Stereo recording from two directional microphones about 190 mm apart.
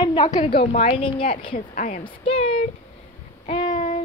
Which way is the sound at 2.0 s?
30° left (ahead or behind).